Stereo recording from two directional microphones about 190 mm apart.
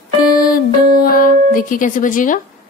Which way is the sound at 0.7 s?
50° left (ahead or behind).